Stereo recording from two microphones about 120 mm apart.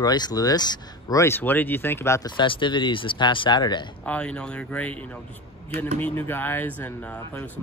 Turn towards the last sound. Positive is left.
turn(degrees=15)  # may be behind; listen again after turning